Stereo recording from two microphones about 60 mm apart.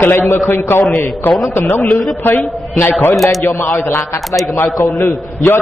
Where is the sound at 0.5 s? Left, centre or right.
Left.